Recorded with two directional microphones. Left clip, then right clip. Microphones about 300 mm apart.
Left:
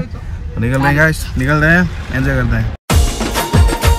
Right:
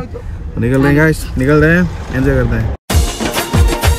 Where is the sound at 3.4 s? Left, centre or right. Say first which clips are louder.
Even; centre.